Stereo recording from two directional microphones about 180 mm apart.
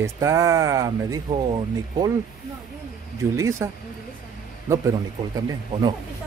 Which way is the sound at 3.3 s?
15° right (ahead or behind).